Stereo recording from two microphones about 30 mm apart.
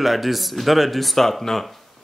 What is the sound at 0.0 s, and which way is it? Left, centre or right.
Speech, centre.